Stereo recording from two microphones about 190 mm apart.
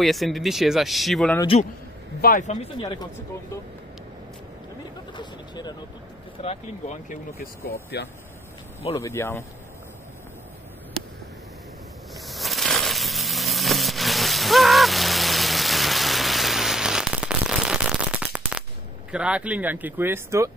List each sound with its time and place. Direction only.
0.0 s speech: centre (ahead or behind)
2.2 s speech: 40° left (ahead or behind)
5.1 s vehicle: 25° left (ahead or behind)
6.4 s speech: 35° left (ahead or behind); by 8.1 s 55° left (ahead or behind)
8.9 s speech: 15° left (ahead or behind)
12.2 s a sound: centre (ahead or behind)
19.1 s speech: 5° right (ahead or behind)